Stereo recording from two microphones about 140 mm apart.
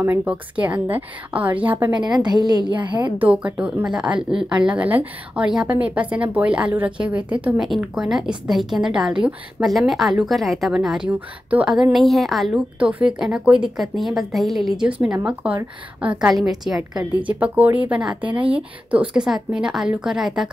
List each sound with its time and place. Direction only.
0.0 s a woman's voice: 15° right (ahead or behind)
2.0 s a woman's voice: 30° right (ahead or behind)
3.2 s a woman's voice: 10° right (ahead or behind)